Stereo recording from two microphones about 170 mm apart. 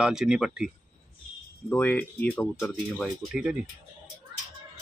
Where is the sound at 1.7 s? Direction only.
10° left (ahead or behind).